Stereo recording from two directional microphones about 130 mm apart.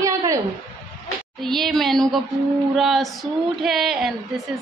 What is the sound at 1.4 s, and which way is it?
Female singing, centre (ahead or behind).